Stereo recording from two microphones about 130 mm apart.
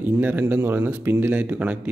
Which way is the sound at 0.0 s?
15° right (ahead or behind).